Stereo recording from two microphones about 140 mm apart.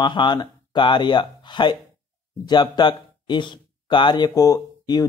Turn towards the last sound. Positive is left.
turn(degrees=30)  # may be behind; listen again after turning